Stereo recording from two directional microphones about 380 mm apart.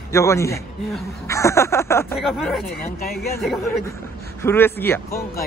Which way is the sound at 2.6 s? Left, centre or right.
Left.